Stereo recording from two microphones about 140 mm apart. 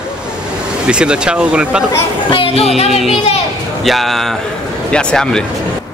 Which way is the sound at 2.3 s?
40° left (ahead or behind).